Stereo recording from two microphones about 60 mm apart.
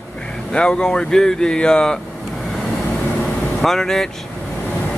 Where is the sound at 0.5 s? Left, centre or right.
Centre.